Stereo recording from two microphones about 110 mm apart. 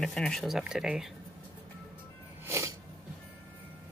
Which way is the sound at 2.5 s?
25° right (ahead or behind).